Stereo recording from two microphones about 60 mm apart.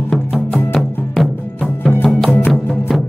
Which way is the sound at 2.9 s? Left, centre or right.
Centre.